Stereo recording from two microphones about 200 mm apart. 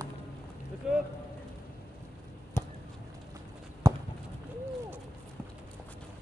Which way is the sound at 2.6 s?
10° left (ahead or behind).